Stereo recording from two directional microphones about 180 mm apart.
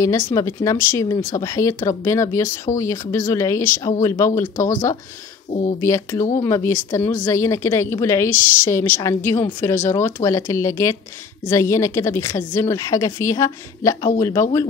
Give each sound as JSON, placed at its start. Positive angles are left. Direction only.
{"t": 0.0, "sound": "a woman's voice", "side_deg": 20}
{"t": 5.5, "sound": "speech", "side_deg": 40}
{"t": 5.8, "sound": "a woman's voice", "side_deg": 15}